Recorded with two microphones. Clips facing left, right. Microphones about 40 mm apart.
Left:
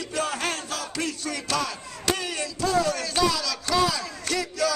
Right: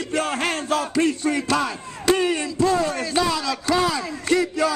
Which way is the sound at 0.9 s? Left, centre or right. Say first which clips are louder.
Right 9 dB; right.